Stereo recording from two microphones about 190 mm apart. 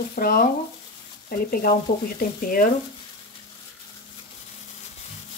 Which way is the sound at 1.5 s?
50° left (ahead or behind).